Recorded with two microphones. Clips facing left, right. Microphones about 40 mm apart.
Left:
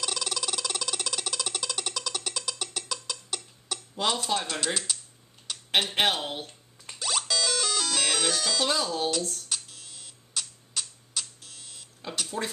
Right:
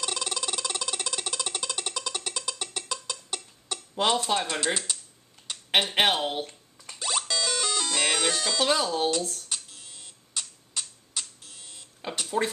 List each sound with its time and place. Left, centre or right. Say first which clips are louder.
0.0 s music: even; centre
3.9 s speech: right 4 dB; right
4.4 s speech: right 3 dB; centre
5.5 s a sound: right 2 dB; centre
5.9 s speech: right 2 dB; centre
7.0 s music: even; centre
12.0 s a sound: right 2 dB; centre